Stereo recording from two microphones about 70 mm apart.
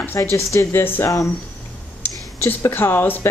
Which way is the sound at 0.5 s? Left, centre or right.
Left.